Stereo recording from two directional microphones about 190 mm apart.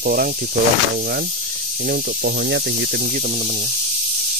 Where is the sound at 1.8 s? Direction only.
55° right (ahead or behind).